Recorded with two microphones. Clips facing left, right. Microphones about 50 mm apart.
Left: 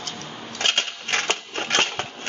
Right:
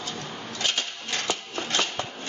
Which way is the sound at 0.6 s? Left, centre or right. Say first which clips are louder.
Left 5 dB; left.